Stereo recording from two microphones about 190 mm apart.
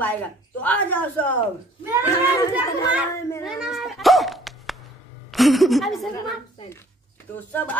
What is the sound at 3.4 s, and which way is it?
Cat, centre (ahead or behind).